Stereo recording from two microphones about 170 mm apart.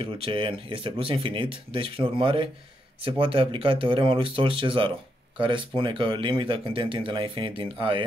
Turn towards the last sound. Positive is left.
turn(degrees=-30)  # may be behind; listen again after turning